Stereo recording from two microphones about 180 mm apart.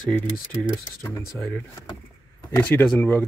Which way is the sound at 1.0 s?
10° left (ahead or behind).